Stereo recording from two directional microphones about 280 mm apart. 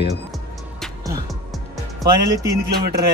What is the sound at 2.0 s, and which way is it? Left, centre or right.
Speech, centre.